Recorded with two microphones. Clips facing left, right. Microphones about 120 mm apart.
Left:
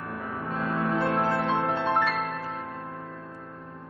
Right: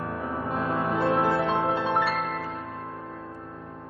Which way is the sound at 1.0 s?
5° right (ahead or behind).